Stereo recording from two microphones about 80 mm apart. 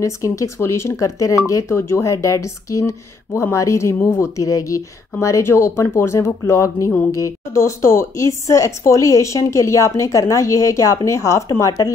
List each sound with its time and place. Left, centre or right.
0.0 s speech: left